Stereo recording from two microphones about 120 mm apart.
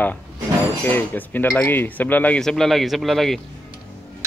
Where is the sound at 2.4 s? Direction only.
5° left (ahead or behind).